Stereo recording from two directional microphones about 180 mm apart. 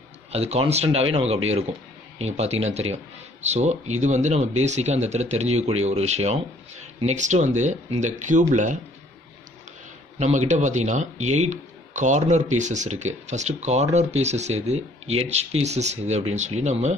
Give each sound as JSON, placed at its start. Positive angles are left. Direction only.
{"t": 0.3, "sound": "speech", "side_deg": -35}
{"t": 10.1, "sound": "speech", "side_deg": -40}